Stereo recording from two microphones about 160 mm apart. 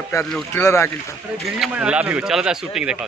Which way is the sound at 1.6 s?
5° right (ahead or behind).